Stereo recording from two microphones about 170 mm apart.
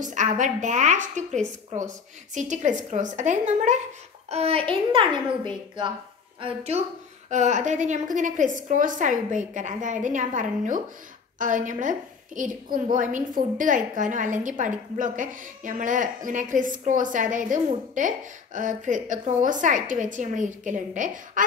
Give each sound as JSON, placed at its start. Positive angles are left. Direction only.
{"t": 0.0, "sound": "a woman's voice", "side_deg": -45}
{"t": 6.4, "sound": "a child's voice", "side_deg": -40}